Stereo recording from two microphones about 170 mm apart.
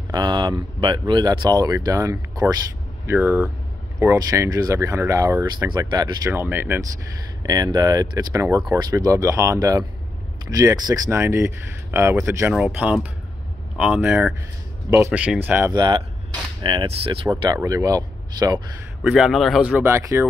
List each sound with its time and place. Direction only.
0.1 s speech: 25° right (ahead or behind)
7.4 s speech: 25° right (ahead or behind)
15.7 s speech: 25° right (ahead or behind)
17.3 s speech: 20° right (ahead or behind)
19.0 s speech: 5° right (ahead or behind)